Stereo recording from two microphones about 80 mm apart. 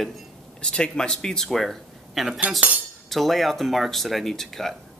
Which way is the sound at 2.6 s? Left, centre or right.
Centre.